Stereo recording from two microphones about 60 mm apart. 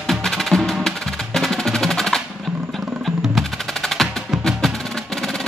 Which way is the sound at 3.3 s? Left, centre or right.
Centre.